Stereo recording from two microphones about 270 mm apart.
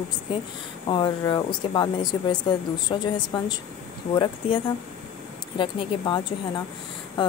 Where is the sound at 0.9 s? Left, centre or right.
Centre.